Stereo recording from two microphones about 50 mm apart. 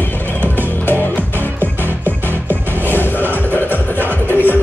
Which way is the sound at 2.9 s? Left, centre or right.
Left.